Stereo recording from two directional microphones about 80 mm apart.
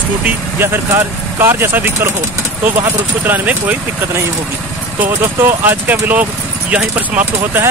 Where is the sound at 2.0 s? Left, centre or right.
Right.